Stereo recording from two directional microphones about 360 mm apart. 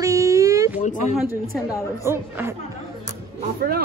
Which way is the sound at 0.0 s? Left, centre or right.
Centre.